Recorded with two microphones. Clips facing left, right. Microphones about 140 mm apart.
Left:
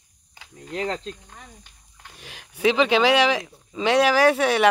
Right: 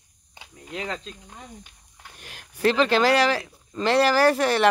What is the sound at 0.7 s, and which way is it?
Speech, 40° left (ahead or behind).